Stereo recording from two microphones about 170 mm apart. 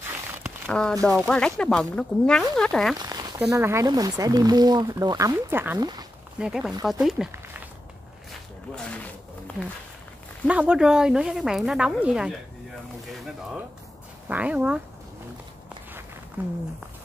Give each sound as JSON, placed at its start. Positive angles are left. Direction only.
{"t": 0.7, "sound": "speech", "side_deg": 5}
{"t": 3.0, "sound": "a sound", "side_deg": -25}
{"t": 3.5, "sound": "speech", "side_deg": -15}
{"t": 5.8, "sound": "speech", "side_deg": -25}
{"t": 6.4, "sound": "speech", "side_deg": -5}
{"t": 10.4, "sound": "speech", "side_deg": -5}
{"t": 14.3, "sound": "speech", "side_deg": -10}
{"t": 16.4, "sound": "speech", "side_deg": -10}